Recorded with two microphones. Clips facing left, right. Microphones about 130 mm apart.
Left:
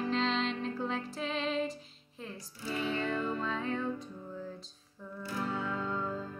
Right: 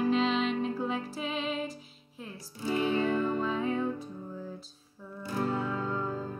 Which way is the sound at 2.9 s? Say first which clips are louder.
Right 4 dB; 5° right (ahead or behind).